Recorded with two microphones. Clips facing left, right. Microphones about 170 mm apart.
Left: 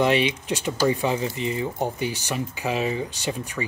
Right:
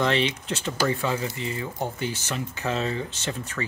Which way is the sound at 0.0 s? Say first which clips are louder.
Left 3 dB; 15° left (ahead or behind).